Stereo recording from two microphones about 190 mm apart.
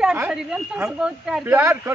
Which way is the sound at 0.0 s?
5° right (ahead or behind).